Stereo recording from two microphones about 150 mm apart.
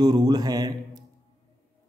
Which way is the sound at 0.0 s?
25° right (ahead or behind).